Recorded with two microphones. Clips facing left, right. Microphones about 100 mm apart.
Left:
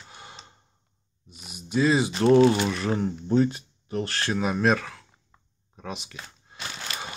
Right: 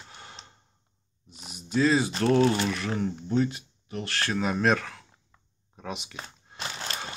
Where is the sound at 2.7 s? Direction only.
30° left (ahead or behind).